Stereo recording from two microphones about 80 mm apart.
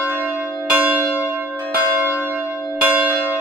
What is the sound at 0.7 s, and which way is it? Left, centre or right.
Church bell, centre.